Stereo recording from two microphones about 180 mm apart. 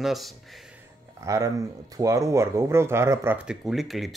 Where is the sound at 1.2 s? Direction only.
15° right (ahead or behind).